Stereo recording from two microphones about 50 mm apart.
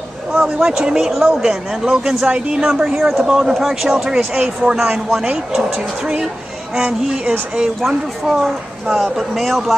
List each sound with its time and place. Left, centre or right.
0.3 s speech: centre
7.8 s speech: centre